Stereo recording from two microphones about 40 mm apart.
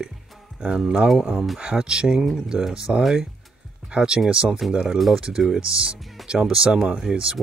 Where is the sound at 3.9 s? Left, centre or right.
Right.